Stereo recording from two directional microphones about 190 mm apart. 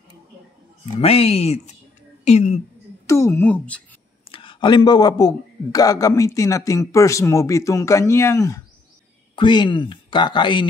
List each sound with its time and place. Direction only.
0.9 s speech: 30° left (ahead or behind)
3.1 s a man's voice: 15° left (ahead or behind)
4.3 s a man's voice: 25° left (ahead or behind)